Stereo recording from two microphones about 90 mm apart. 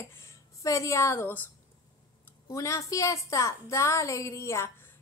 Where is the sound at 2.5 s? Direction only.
35° left (ahead or behind).